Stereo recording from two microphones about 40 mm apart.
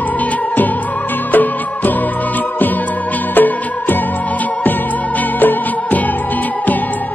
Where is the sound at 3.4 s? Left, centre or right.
Left.